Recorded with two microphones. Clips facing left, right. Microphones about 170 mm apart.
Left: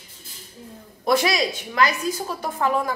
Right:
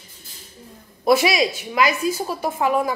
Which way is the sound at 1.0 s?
10° right (ahead or behind).